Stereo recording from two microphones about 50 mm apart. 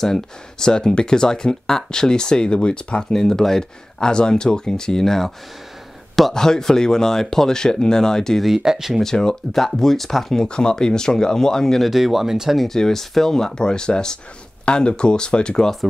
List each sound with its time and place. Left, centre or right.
0.0 s speech: centre
8.5 s speech: centre
9.0 s speech: centre
11.9 s speech: centre
12.6 s speech: centre